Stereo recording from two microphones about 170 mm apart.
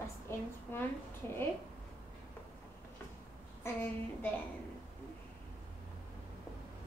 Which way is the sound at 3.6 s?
15° left (ahead or behind).